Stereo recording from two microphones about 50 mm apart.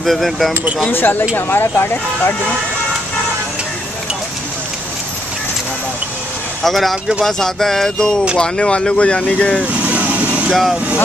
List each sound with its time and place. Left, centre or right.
0.0 s speech: centre
0.9 s speech: left
6.6 s speech: centre; by 9.7 s left
9.7 s vehicle: right